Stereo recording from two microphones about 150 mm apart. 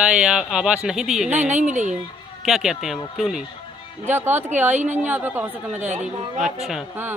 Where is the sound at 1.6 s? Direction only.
55° right (ahead or behind).